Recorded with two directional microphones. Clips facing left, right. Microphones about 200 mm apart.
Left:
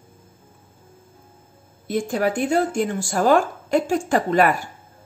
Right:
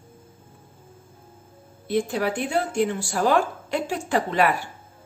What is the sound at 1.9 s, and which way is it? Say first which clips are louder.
Speech: left 2 dB; 45° left (ahead or behind).